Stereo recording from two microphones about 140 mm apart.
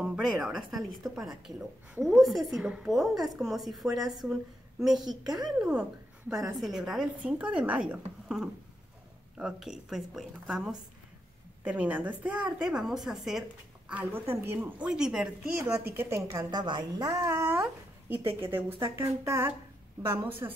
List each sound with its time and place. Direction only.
0.0 s a woman's voice: 5° right (ahead or behind)
2.0 s a woman's voice: 20° right (ahead or behind)
2.2 s a woman's voice: centre (ahead or behind)
11.6 s speech: 10° right (ahead or behind)
14.9 s a woman's voice: 5° right (ahead or behind)
15.9 s a woman's voice: 15° right (ahead or behind)